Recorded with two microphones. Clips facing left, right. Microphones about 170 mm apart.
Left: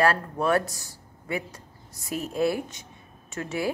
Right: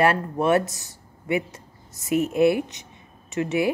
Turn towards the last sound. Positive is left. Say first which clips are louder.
# right 6 dB
turn(degrees=-20)  # may be behind; listen again after turning